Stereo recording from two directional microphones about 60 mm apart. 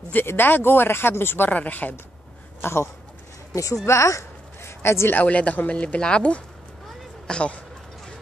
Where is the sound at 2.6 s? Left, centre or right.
Left.